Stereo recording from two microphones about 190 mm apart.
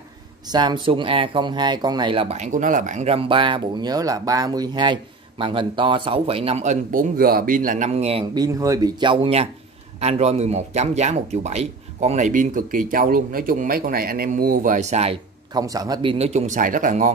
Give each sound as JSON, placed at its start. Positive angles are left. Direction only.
{"t": 0.5, "sound": "speech", "side_deg": -25}
{"t": 8.5, "sound": "speech", "side_deg": -20}
{"t": 15.5, "sound": "speech", "side_deg": -20}